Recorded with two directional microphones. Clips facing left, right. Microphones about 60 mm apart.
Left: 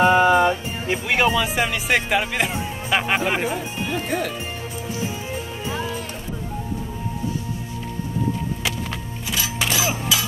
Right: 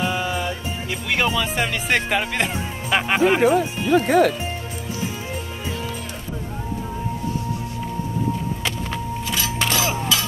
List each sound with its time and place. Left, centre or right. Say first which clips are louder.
0.0 s music: left 9 dB; left
1.1 s speech: left 1 dB; centre
3.4 s speech: right 8 dB; right
8.6 s a sound: right 2 dB; centre